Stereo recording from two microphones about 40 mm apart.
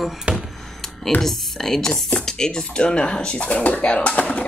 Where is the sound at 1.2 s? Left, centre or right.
Centre; by 4.4 s left.